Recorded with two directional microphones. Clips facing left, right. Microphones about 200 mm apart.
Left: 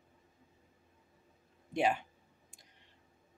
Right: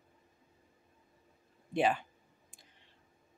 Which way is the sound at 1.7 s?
10° left (ahead or behind).